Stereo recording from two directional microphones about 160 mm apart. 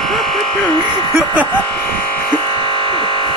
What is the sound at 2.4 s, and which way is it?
Music, 35° right (ahead or behind).